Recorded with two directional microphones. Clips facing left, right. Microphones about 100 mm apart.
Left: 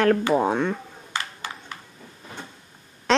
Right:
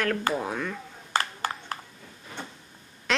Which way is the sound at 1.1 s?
45° right (ahead or behind).